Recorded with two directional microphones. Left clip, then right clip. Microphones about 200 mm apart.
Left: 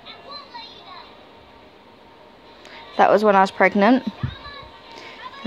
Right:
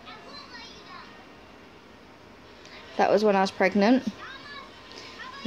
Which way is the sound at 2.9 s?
20° left (ahead or behind).